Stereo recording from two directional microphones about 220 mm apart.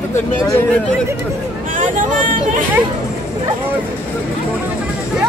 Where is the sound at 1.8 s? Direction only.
35° right (ahead or behind).